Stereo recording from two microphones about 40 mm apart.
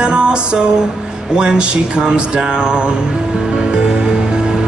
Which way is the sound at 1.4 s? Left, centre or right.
Right.